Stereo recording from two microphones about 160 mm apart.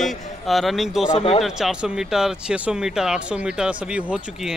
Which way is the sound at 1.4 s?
5° right (ahead or behind).